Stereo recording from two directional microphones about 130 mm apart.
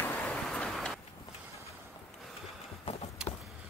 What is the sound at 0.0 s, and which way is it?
Vehicle, 20° left (ahead or behind).